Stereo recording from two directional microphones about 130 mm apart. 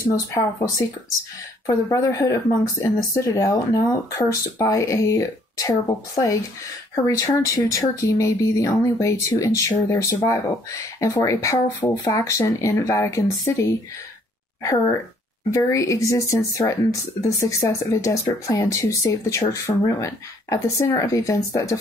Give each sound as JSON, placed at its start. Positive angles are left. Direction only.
{"t": 0.0, "sound": "speech", "side_deg": 25}